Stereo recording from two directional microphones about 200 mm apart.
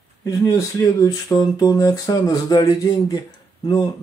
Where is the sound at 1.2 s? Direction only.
20° left (ahead or behind).